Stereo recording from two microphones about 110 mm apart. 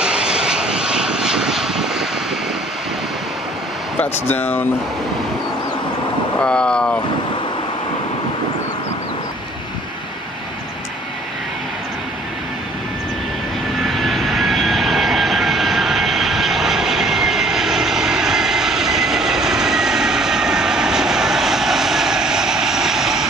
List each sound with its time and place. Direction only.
0.0 s vehicle: 10° right (ahead or behind)
4.0 s speech: 15° left (ahead or behind)
6.4 s speech: 10° left (ahead or behind)
13.8 s vehicle: centre (ahead or behind)